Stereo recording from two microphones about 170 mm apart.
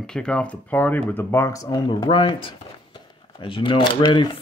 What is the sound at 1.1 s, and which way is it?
Speech, 15° left (ahead or behind).